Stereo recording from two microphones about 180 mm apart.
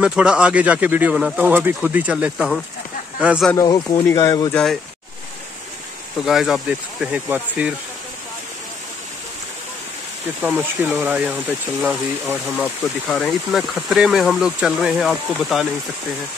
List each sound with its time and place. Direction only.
0.0 s speech: 5° right (ahead or behind)
3.5 s speech: 20° left (ahead or behind)
6.2 s speech: centre (ahead or behind)
10.4 s speech: 10° right (ahead or behind)